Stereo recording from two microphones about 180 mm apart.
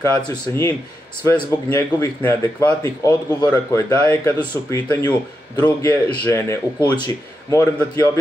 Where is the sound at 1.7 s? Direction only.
15° left (ahead or behind).